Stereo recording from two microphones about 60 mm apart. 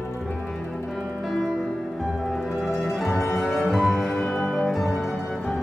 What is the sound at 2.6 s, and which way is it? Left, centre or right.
Music, centre.